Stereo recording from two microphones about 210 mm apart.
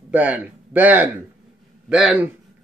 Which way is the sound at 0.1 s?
5° right (ahead or behind).